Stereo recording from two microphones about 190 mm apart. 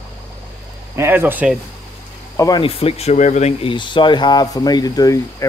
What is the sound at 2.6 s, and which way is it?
Speech, 30° left (ahead or behind).